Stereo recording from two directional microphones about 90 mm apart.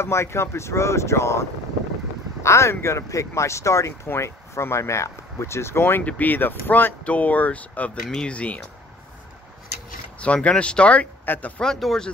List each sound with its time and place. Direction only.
0.0 s speech: 30° left (ahead or behind); by 8.6 s 15° left (ahead or behind)
10.2 s speech: 15° left (ahead or behind)
11.6 s speech: 5° left (ahead or behind)